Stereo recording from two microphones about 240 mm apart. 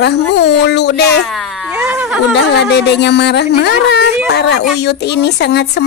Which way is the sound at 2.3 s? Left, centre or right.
Left.